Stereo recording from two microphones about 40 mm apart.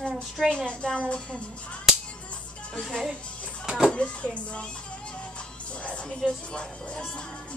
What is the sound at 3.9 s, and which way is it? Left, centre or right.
Speech, left.